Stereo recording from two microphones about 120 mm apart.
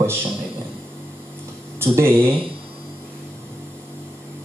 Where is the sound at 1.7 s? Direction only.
20° right (ahead or behind).